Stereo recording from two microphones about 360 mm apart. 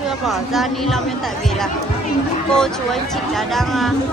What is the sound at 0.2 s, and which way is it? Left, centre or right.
Speech, centre.